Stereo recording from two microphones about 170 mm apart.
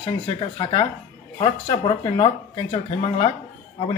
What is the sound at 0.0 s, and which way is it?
Speech, 25° left (ahead or behind).